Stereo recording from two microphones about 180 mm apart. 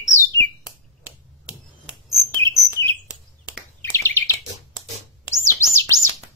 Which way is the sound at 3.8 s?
15° left (ahead or behind).